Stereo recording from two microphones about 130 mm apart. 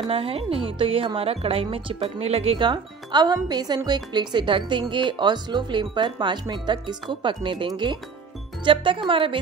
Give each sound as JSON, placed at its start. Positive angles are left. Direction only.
{"t": 0.1, "sound": "speech", "side_deg": -45}